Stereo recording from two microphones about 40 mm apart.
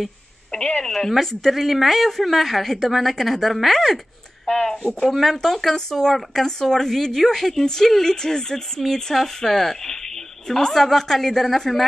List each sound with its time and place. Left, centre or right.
0.5 s telephone: centre
0.8 s a sound: centre
1.2 s a woman's voice: centre